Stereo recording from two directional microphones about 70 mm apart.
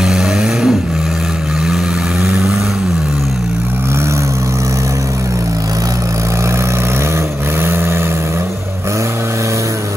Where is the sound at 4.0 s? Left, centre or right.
Right.